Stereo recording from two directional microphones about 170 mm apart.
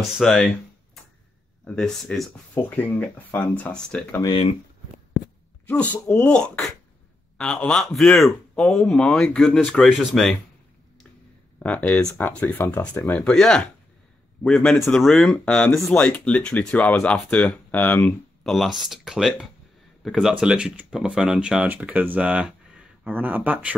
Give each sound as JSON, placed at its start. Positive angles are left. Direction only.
{"t": 0.2, "sound": "speech", "side_deg": 0}
{"t": 1.6, "sound": "speech", "side_deg": 5}
{"t": 4.2, "sound": "speech", "side_deg": 25}
{"t": 6.0, "sound": "speech", "side_deg": 10}
{"t": 11.6, "sound": "speech", "side_deg": 10}